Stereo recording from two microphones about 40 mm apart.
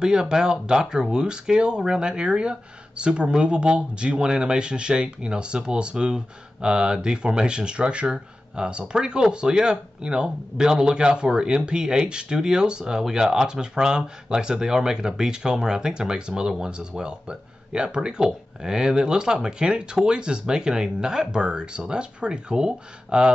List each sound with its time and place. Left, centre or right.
0.0 s speech: centre